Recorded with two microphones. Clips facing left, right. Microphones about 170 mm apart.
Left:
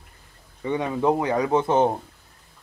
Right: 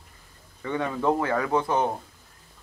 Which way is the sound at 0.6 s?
20° left (ahead or behind).